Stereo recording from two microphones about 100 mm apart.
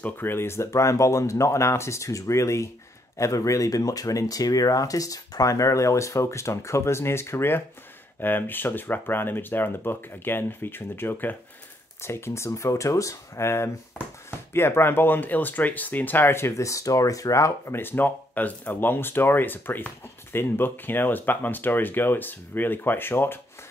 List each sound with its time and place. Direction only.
0.0 s speech: 20° left (ahead or behind)